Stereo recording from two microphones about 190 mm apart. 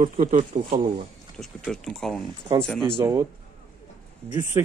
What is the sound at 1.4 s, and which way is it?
Speech, centre (ahead or behind).